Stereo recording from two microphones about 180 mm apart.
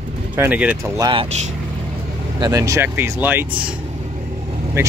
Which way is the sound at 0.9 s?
20° right (ahead or behind).